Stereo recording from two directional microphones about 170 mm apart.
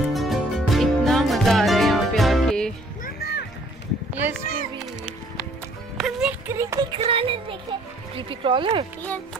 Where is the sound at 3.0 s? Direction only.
70° left (ahead or behind).